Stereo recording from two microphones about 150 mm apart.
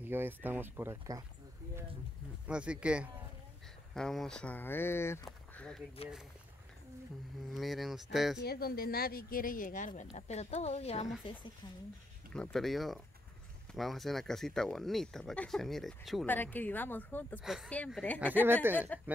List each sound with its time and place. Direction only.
0.0 s speech: 15° right (ahead or behind)
2.4 s speech: 5° right (ahead or behind); by 5.2 s 15° left (ahead or behind)
5.2 s a sound: 5° left (ahead or behind)
7.5 s speech: centre (ahead or behind)
8.5 s speech: 90° left; by 10.0 s 60° left (ahead or behind)
10.1 s speech: 45° left (ahead or behind)
12.4 s speech: 5° left (ahead or behind)
16.3 s speech: 10° left (ahead or behind)
17.4 s speech: 5° right (ahead or behind)
18.4 s speech: 15° right (ahead or behind)